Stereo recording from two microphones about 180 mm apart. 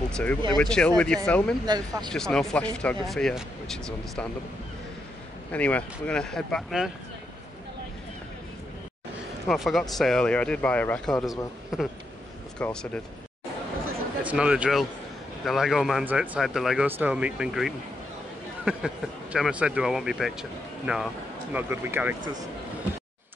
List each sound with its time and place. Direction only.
0.1 s speech: 10° left (ahead or behind)
1.7 s speech: 25° right (ahead or behind)
2.1 s speech: 5° left (ahead or behind)
5.5 s speech: 10° left (ahead or behind)
9.5 s speech: centre (ahead or behind)
14.2 s speech: 5° right (ahead or behind)
19.3 s speech: 5° right (ahead or behind)